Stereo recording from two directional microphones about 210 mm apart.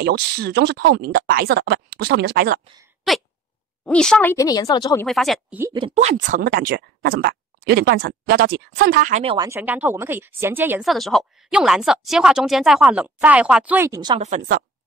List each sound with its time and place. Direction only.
0.0 s speech: 50° right (ahead or behind)
3.1 s speech: centre (ahead or behind); by 5.0 s 15° left (ahead or behind)
5.0 s speech: centre (ahead or behind)
5.6 s speech: 20° right (ahead or behind); by 9.2 s 40° right (ahead or behind)
9.2 s speech: 25° right (ahead or behind)
9.5 s speech: 10° right (ahead or behind)
14.1 s a woman's voice: 35° right (ahead or behind)